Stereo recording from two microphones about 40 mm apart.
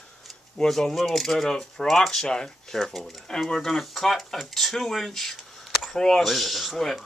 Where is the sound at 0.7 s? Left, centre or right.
Centre.